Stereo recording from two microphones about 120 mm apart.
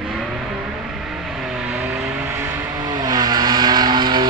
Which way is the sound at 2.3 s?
25° right (ahead or behind).